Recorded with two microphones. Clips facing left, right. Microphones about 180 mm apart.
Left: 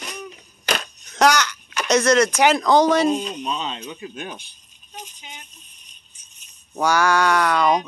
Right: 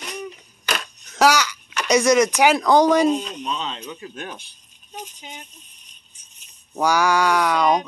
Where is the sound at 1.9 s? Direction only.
15° right (ahead or behind).